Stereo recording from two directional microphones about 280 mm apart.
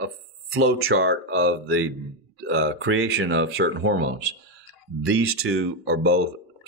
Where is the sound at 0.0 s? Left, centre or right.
Right.